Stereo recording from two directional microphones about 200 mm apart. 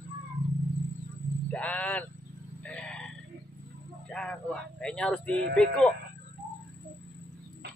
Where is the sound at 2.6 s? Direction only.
5° left (ahead or behind).